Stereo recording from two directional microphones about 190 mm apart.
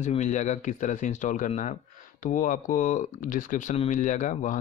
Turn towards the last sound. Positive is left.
turn(degrees=40)  # may be behind; listen again after turning